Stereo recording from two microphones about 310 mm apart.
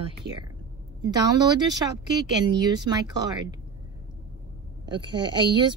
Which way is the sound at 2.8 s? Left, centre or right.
Centre.